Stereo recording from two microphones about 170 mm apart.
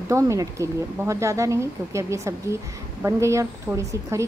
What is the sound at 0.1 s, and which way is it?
A woman's voice, 15° right (ahead or behind).